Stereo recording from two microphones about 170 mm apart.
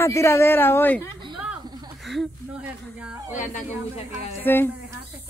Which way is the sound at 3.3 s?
50° left (ahead or behind).